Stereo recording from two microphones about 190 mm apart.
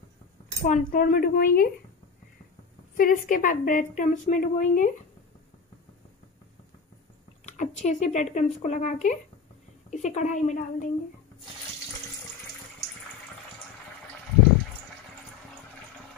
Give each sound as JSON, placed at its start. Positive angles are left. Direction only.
{"t": 0.6, "sound": "a woman's voice", "side_deg": 40}
{"t": 3.0, "sound": "a woman's voice", "side_deg": 45}
{"t": 7.4, "sound": "speech", "side_deg": 40}